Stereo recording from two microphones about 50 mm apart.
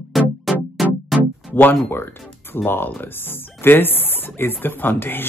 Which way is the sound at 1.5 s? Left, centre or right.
Left.